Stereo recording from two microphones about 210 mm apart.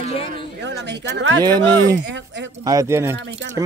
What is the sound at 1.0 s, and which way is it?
Speech, 60° right (ahead or behind).